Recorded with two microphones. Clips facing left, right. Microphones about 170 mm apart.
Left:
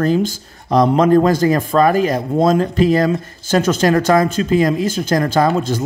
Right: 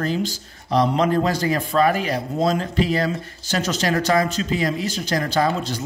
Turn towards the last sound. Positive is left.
turn(degrees=50)  # may be behind; listen again after turning